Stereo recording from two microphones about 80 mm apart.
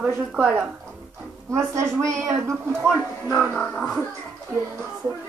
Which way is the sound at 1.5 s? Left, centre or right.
Right.